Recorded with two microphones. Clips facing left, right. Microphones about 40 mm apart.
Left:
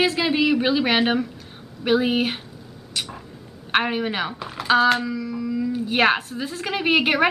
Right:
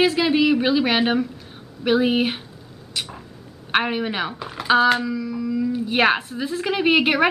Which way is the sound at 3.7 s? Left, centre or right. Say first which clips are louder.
Even; centre.